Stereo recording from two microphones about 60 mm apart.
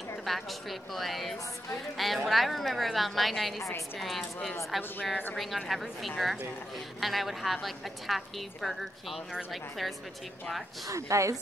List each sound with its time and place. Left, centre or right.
0.2 s a woman's voice: centre
4.7 s a woman's voice: centre
10.9 s a woman's voice: right